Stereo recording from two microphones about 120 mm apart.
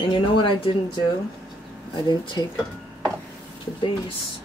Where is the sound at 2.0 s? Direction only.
40° left (ahead or behind).